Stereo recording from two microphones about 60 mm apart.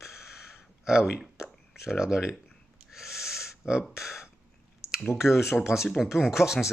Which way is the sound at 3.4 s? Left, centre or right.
Centre.